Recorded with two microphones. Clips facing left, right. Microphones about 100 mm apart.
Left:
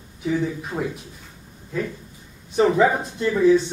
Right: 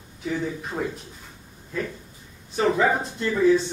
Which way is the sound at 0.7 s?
Centre (ahead or behind).